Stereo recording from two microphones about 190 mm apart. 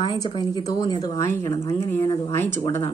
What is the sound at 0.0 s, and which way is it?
Speech, 25° left (ahead or behind).